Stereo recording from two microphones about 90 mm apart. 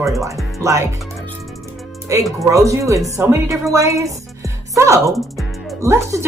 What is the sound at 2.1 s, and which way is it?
A woman's voice, 35° right (ahead or behind).